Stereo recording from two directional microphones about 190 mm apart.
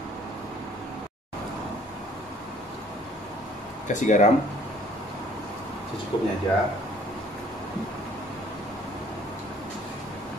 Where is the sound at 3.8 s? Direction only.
40° left (ahead or behind).